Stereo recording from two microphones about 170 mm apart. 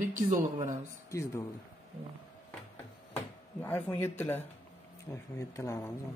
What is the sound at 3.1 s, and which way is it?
Speech, 15° left (ahead or behind).